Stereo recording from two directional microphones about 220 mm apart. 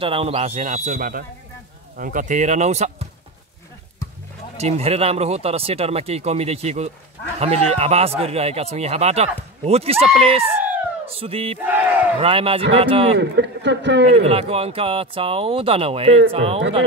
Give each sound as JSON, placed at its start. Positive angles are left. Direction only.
{"t": 0.0, "sound": "speech", "side_deg": -25}
{"t": 4.6, "sound": "speech", "side_deg": -30}
{"t": 10.4, "sound": "police car", "side_deg": -10}
{"t": 11.1, "sound": "speech", "side_deg": -25}
{"t": 11.6, "sound": "battle cry", "side_deg": -10}
{"t": 12.2, "sound": "speech", "side_deg": -25}
{"t": 13.2, "sound": "speech", "side_deg": -50}
{"t": 14.0, "sound": "speech", "side_deg": -30}